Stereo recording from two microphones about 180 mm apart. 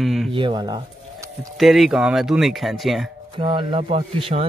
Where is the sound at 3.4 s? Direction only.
30° right (ahead or behind).